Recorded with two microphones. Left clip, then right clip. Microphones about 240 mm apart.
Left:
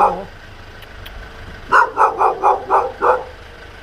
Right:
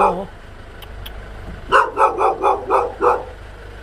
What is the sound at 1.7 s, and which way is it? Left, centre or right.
Dog, centre.